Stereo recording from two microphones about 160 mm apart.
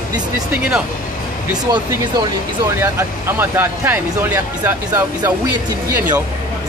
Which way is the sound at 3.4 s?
15° right (ahead or behind).